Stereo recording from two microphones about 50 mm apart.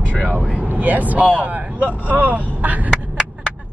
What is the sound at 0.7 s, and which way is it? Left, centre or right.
Speech, right.